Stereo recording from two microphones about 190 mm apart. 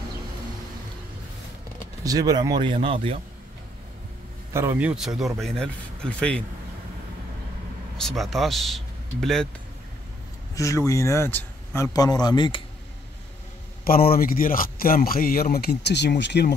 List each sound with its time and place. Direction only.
2.0 s speech: 20° right (ahead or behind)
4.6 s speech: 10° right (ahead or behind); by 6.4 s 5° left (ahead or behind)
8.0 s speech: centre (ahead or behind)
10.5 s a man's voice: 15° left (ahead or behind)
13.8 s a man's voice: 50° left (ahead or behind)